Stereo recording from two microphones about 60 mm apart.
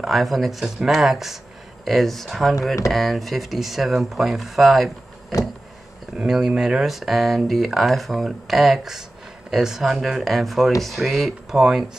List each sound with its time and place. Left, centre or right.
0.0 s speech: centre
5.3 s a sound: left
6.1 s speech: centre